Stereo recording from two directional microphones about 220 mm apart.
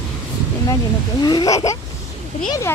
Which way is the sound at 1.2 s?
20° left (ahead or behind).